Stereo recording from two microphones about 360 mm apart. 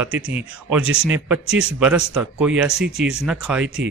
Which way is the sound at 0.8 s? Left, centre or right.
Right.